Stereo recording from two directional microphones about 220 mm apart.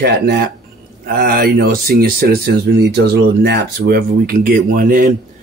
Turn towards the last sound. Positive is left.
turn(degrees=-40)  # may be behind; listen again after turning